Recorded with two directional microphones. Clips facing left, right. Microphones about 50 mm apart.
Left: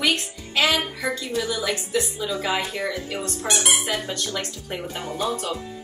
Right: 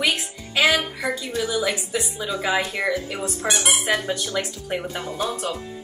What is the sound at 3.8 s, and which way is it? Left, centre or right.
Speech, centre.